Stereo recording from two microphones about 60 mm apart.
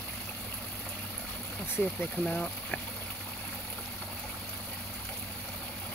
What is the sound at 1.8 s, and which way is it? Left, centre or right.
Speech, left.